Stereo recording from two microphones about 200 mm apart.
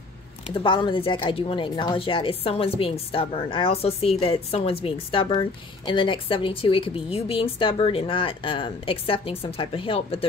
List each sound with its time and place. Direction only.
0.6 s a woman's voice: 25° left (ahead or behind)